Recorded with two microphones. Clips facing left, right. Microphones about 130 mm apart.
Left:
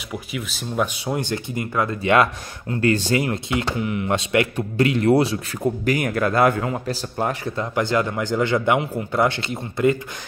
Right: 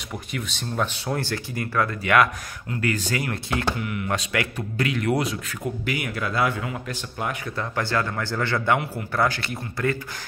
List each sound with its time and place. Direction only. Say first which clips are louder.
0.1 s speech: left 2 dB; centre (ahead or behind); by 5.9 s 30° left (ahead or behind)
5.9 s speech: left 5 dB; 45° left (ahead or behind)
7.5 s speech: left 4 dB; 15° left (ahead or behind)